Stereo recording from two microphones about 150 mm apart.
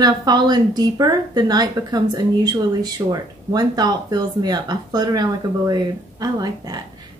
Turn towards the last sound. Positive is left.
turn(degrees=-25)  # may be behind; listen again after turning